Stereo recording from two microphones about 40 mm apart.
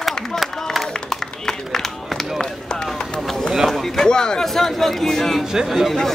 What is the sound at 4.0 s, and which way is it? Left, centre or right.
Speech, centre.